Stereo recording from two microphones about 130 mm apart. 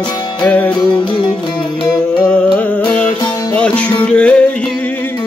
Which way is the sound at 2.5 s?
10° left (ahead or behind).